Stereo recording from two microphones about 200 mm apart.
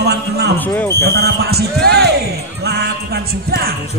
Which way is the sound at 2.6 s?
55° right (ahead or behind).